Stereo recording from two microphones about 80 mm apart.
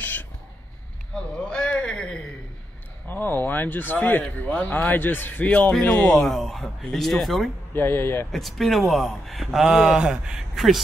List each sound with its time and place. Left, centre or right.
0.0 s a sound: left
1.1 s a sound: centre
3.1 s speech: left
6.2 s speech: centre
7.7 s speech: left
8.3 s speech: centre